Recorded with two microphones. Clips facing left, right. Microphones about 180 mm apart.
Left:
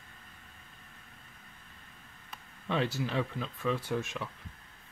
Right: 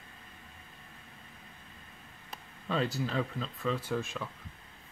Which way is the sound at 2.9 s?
15° left (ahead or behind).